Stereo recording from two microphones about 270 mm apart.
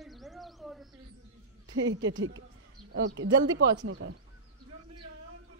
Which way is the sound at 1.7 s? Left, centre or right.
Right.